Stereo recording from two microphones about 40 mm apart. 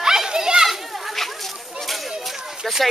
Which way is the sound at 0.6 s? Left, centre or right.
Centre.